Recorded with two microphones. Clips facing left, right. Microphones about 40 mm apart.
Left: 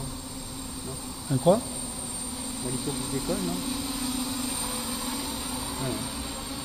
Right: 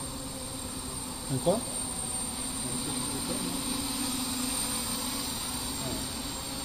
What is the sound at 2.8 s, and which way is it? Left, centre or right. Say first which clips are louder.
Vehicle: left 6 dB; centre.